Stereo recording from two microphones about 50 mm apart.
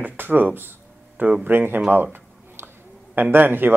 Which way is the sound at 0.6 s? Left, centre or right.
Right.